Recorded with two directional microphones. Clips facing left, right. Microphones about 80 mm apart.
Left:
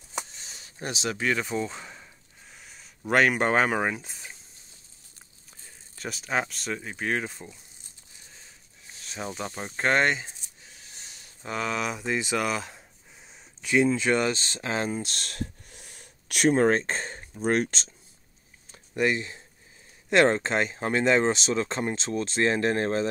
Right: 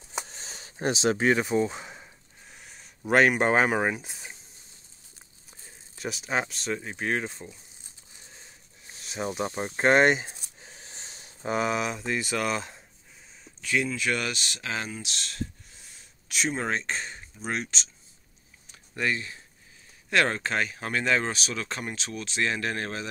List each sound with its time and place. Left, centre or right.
0.3 s speech: right; by 2.0 s centre
2.5 s a sound: centre
5.9 s speech: centre
9.0 s speech: centre
10.6 s a sound: right; by 11.8 s centre
11.8 s speech: centre
12.4 s speech: centre
13.6 s a sound: centre
13.8 s speech: left
18.9 s speech: left